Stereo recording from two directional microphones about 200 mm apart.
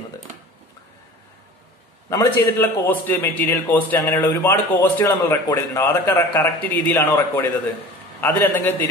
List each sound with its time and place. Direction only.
2.0 s speech: 10° left (ahead or behind)